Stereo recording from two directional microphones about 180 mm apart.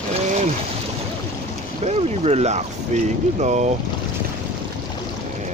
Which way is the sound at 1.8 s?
35° right (ahead or behind).